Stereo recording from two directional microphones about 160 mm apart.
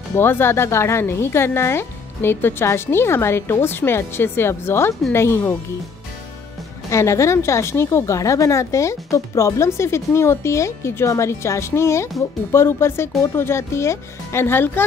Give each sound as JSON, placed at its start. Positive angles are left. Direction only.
{"t": 0.1, "sound": "speech", "side_deg": 15}
{"t": 6.9, "sound": "speech", "side_deg": 20}